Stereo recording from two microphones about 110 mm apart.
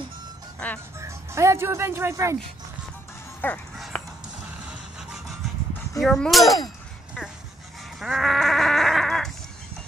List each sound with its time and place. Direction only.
0.6 s speech: 10° left (ahead or behind)
0.9 s speech: 25° right (ahead or behind)
3.3 s speech: 15° left (ahead or behind)
3.7 s dog: centre (ahead or behind)
5.9 s speech: 5° left (ahead or behind)
8.0 s sheep: centre (ahead or behind)